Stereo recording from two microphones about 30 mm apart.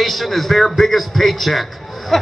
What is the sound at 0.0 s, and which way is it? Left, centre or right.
A man's voice, centre.